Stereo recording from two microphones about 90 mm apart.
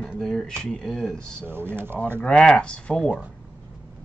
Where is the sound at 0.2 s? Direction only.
5° left (ahead or behind).